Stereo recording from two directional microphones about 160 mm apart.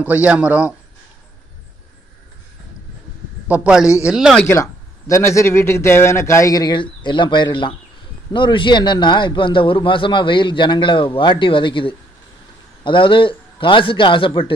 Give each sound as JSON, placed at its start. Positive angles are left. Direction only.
{"t": 0.0, "sound": "a man's voice", "side_deg": -10}
{"t": 3.4, "sound": "a man's voice", "side_deg": -10}
{"t": 4.5, "sound": "a man's voice", "side_deg": 20}